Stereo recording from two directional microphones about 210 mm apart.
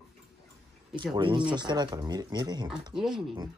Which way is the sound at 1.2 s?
25° right (ahead or behind).